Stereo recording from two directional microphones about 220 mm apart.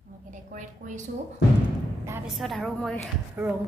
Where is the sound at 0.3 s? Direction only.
35° right (ahead or behind).